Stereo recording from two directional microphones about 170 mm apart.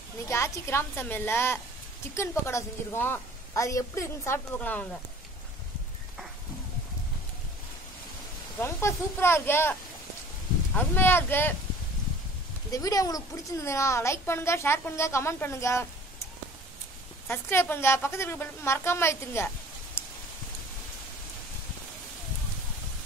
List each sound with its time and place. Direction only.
0.3 s a woman's voice: 15° left (ahead or behind)
8.5 s a woman's voice: 15° left (ahead or behind)
12.7 s a woman's voice: 20° left (ahead or behind)
17.3 s a woman's voice: 10° left (ahead or behind)